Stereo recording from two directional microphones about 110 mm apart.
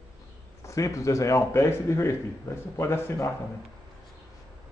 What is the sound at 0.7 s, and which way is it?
Speech, 30° left (ahead or behind).